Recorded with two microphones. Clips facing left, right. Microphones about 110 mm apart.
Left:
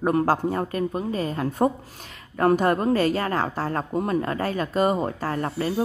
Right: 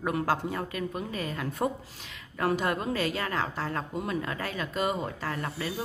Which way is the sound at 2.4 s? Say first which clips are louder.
Left 8 dB; 45° left (ahead or behind).